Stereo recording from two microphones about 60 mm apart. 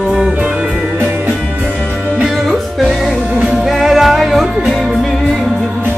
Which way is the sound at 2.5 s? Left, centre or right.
Centre.